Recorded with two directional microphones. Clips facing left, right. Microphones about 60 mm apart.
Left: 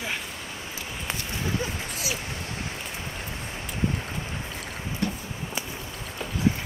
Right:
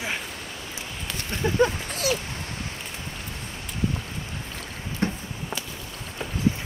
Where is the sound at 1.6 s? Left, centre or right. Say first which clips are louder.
Right 9 dB; right.